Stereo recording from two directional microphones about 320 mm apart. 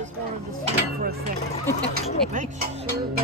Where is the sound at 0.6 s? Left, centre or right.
Right.